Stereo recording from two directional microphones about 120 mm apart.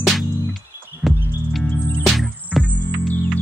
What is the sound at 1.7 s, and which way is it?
Music, 10° left (ahead or behind).